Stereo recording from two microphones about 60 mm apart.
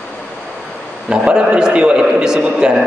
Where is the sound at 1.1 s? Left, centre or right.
Centre.